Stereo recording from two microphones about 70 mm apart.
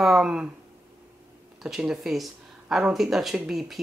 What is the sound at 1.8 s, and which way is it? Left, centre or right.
Speech, centre.